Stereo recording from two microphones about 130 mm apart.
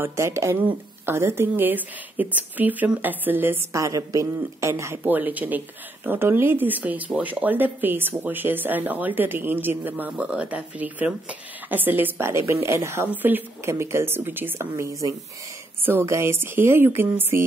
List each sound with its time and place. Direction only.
0.0 s speech: 20° right (ahead or behind)